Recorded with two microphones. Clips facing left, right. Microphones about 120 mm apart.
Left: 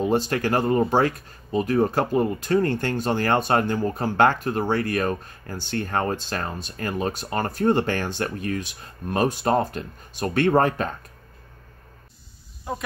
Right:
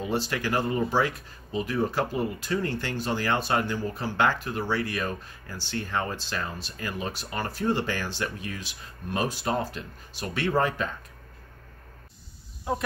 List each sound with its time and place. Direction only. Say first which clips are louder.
0.0 s speech: left 6 dB; 45° left (ahead or behind)